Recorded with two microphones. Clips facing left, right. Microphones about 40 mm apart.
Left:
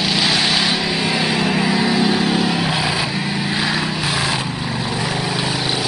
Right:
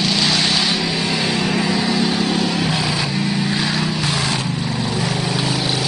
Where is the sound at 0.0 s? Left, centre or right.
Centre.